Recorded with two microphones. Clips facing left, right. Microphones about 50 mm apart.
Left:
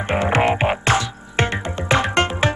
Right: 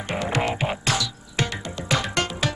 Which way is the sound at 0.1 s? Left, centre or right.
Left.